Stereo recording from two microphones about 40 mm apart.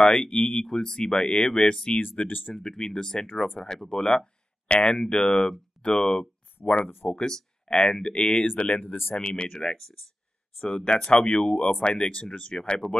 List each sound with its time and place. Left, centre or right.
0.0 s speech: centre
2.1 s speech: left
2.5 s speech: centre
5.1 s speech: left
5.8 s a sound: left
7.1 s speech: centre
8.5 s speech: left
9.1 s speech: left